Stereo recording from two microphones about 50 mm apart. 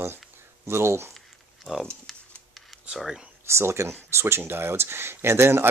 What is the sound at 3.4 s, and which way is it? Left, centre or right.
Speech, right.